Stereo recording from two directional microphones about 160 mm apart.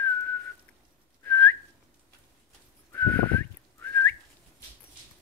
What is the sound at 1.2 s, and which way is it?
Whistling, 15° left (ahead or behind).